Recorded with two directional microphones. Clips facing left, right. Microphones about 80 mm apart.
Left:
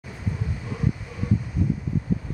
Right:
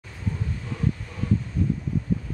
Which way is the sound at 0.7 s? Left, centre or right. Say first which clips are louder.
Even; centre.